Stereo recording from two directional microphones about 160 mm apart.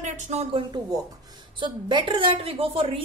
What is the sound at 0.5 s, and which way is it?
A woman's voice, 25° right (ahead or behind).